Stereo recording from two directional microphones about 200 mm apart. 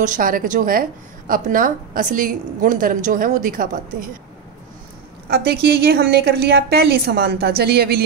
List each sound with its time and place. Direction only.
0.0 s a woman's voice: 40° right (ahead or behind)
5.3 s a woman's voice: 50° right (ahead or behind)